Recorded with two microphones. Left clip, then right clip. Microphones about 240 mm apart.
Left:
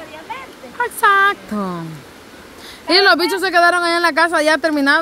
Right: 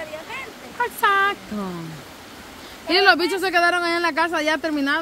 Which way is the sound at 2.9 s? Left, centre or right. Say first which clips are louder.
Left 4 dB; centre.